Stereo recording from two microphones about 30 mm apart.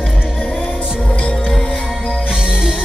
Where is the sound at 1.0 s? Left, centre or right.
Left.